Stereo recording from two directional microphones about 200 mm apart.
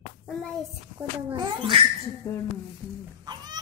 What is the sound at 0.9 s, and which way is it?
Speech, 20° right (ahead or behind).